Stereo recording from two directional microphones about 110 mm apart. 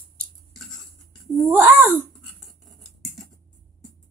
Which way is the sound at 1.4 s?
20° right (ahead or behind).